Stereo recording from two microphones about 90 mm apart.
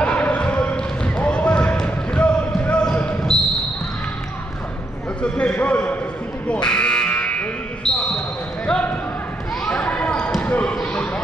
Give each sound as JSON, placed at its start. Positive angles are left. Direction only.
{"t": 0.0, "sound": "basketball bounce", "side_deg": 15}
{"t": 5.2, "sound": "a sound", "side_deg": 15}
{"t": 6.4, "sound": "buzzer", "side_deg": 10}
{"t": 8.6, "sound": "basketball bounce", "side_deg": 15}